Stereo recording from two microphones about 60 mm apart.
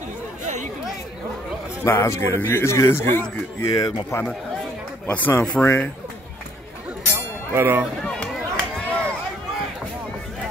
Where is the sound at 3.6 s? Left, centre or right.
Left.